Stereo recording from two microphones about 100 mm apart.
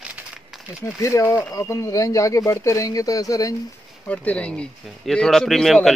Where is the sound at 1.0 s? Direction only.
30° left (ahead or behind).